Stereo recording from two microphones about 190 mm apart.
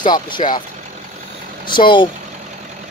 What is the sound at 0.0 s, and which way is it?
Speech, 25° left (ahead or behind).